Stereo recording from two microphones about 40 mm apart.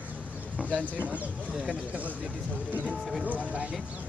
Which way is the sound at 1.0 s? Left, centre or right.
Right.